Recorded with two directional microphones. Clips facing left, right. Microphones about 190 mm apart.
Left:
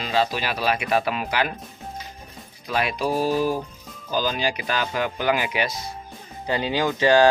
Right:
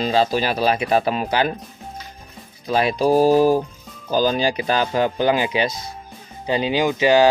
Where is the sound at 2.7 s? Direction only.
30° right (ahead or behind).